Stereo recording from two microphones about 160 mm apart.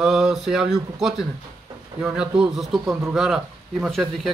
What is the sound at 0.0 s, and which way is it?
Speech, 5° right (ahead or behind).